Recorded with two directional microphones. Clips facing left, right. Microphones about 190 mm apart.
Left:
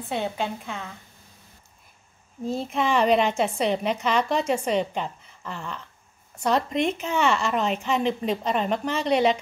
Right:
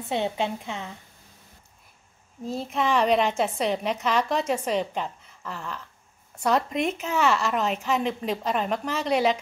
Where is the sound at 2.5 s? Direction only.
Centre (ahead or behind).